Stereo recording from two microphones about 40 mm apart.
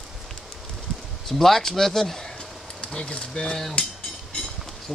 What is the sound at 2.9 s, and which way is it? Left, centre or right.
Speech, left.